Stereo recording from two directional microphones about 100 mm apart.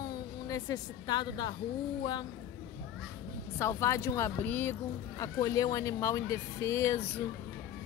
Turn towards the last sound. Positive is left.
turn(degrees=30)  # may be behind; listen again after turning